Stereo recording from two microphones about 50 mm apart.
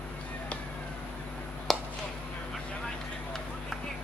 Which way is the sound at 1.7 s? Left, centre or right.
Centre.